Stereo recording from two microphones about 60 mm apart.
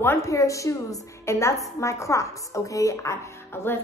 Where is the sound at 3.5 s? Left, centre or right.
Left.